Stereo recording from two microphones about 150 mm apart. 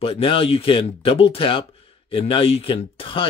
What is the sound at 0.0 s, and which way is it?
Speech, 40° left (ahead or behind).